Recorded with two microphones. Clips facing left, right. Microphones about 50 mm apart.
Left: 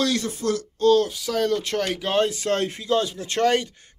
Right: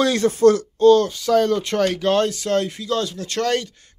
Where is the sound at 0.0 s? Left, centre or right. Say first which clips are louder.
Right 9 dB; right.